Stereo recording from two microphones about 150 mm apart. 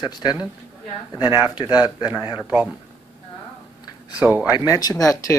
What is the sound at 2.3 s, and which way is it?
Speech, 10° right (ahead or behind).